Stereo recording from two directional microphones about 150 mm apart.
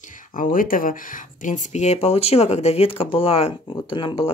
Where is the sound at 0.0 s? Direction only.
60° left (ahead or behind).